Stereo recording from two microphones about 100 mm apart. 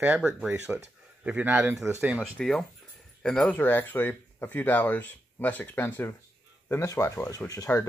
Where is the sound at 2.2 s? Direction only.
5° left (ahead or behind).